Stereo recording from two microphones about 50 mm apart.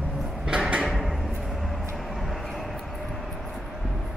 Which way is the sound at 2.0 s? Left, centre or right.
Centre.